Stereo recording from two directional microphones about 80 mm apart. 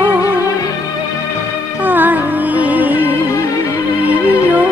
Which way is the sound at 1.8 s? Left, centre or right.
Right.